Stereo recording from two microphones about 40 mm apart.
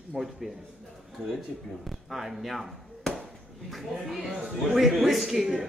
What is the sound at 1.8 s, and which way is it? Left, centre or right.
Speech, centre.